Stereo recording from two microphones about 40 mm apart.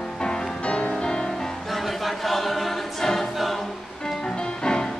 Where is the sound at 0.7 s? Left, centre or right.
Left.